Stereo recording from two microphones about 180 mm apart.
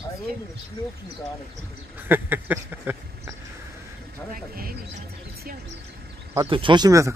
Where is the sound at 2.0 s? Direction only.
10° right (ahead or behind).